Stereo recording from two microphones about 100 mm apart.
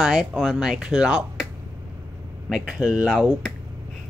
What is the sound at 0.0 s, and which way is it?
Speech, 5° right (ahead or behind).